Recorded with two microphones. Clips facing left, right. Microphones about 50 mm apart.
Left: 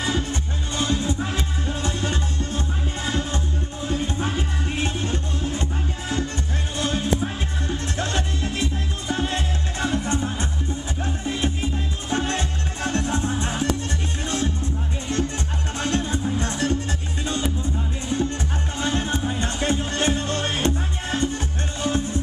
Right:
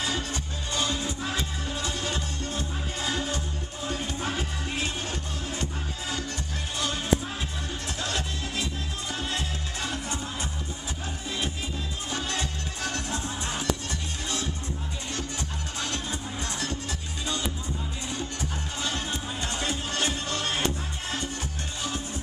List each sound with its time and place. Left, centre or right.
0.0 s music: left
12.1 s music: left